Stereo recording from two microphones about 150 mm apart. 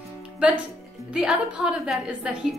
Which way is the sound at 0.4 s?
10° right (ahead or behind).